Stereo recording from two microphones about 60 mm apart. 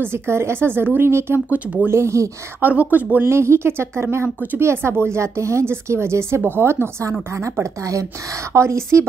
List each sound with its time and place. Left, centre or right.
0.0 s a woman's voice: right
1.9 s speech: right
2.6 s speech: right
3.3 s a woman's voice: right
7.8 s speech: right
8.5 s a woman's voice: right